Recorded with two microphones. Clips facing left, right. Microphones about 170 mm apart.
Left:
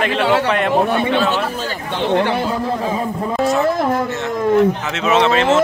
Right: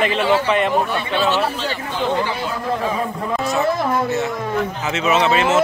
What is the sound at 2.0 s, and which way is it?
Speech, 70° left (ahead or behind).